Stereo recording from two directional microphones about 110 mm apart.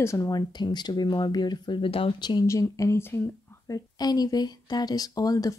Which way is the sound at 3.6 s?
35° left (ahead or behind).